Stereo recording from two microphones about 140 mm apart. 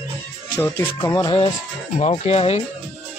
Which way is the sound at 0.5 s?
15° left (ahead or behind).